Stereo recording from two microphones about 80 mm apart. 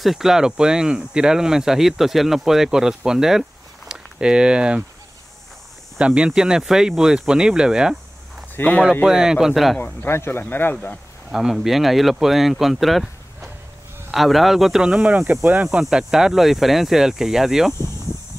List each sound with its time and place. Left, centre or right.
0.0 s speech: centre
5.9 s speech: centre
8.5 s speech: centre
9.0 s speech: centre
9.8 s speech: left
11.3 s speech: centre